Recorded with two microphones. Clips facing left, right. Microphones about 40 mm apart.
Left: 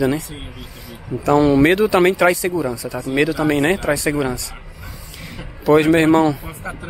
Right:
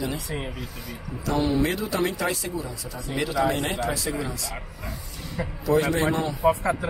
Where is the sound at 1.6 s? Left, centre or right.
Left.